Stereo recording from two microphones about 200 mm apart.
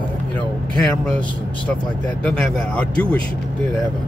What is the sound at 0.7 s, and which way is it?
Speech, 5° left (ahead or behind).